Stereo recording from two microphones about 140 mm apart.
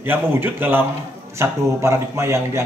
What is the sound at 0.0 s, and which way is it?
A man's voice, 15° right (ahead or behind).